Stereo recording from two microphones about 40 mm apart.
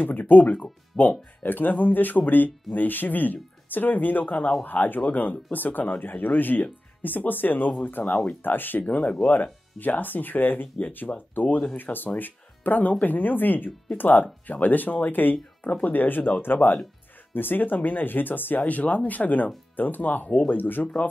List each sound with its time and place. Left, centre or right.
0.0 s speech: left
1.4 s speech: left
8.4 s speech: left
8.8 s speech: left
9.3 s speech: left
15.6 s speech: left
18.7 s speech: left
20.2 s speech: left
20.5 s speech: left